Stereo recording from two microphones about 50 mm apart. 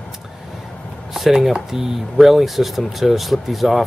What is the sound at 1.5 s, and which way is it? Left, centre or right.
Speech, centre.